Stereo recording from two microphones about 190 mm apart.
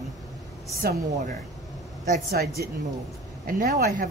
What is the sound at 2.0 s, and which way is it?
A man's voice, 50° right (ahead or behind).